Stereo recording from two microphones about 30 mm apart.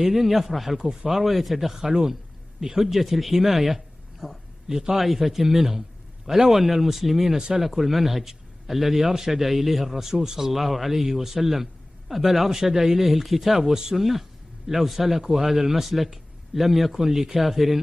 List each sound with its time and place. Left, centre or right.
0.0 s speech: centre
0.7 s speech: centre
1.2 s speech: centre
4.6 s speech: right
4.9 s speech: centre
7.3 s speech: right
7.6 s speech: centre
9.9 s speech: centre
13.6 s speech: centre
17.0 s speech: centre